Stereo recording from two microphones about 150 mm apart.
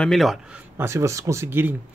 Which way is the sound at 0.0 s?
Centre (ahead or behind).